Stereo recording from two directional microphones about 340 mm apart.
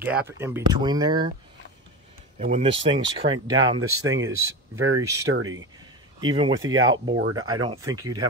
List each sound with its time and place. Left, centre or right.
0.0 s speech: centre
2.3 s speech: centre
4.7 s speech: right
6.2 s speech: centre
7.2 s speech: right
7.4 s speech: centre